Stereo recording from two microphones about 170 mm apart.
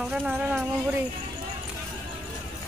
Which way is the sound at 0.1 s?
5° right (ahead or behind).